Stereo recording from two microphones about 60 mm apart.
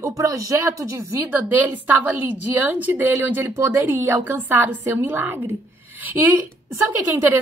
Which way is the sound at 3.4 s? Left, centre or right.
Right.